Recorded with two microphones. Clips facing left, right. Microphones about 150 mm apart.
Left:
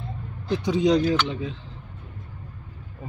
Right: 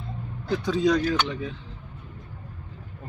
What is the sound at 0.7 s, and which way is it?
Speech, 20° left (ahead or behind).